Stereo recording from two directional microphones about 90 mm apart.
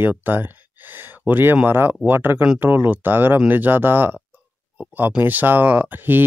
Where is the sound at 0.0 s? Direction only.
20° right (ahead or behind).